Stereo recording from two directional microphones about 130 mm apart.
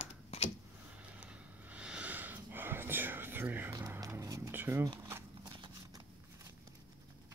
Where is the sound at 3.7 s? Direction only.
25° right (ahead or behind).